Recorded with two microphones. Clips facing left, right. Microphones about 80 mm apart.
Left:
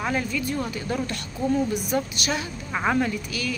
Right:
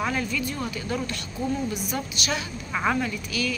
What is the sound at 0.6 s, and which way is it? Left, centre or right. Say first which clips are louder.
Speech: left 2 dB; left.